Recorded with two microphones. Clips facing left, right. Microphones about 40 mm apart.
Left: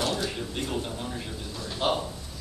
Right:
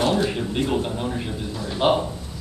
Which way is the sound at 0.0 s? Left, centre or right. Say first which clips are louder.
Right 8 dB; right.